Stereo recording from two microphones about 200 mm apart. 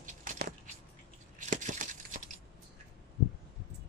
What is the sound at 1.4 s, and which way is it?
Crumpling, 40° right (ahead or behind).